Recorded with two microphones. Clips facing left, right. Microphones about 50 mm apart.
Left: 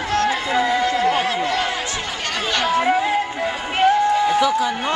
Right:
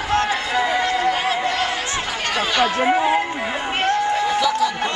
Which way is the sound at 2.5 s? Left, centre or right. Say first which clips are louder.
Left 1 dB; centre.